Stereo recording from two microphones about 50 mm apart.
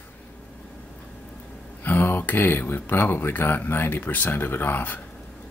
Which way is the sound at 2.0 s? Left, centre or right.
Left.